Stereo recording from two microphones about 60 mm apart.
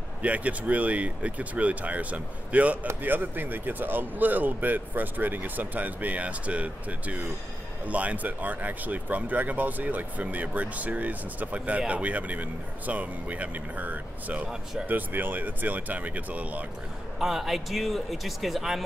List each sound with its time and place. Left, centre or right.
0.2 s speech: right
14.5 s speech: centre
14.9 s speech: right
17.2 s a man's voice: centre